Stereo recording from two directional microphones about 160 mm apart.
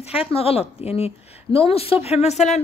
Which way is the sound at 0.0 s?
35° left (ahead or behind).